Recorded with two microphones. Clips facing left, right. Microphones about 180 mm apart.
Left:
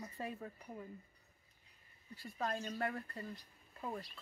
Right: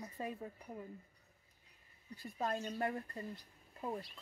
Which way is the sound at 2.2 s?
15° right (ahead or behind).